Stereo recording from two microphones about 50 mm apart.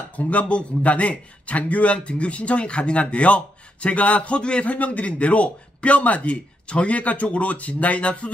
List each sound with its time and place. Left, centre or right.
0.1 s a man's voice: left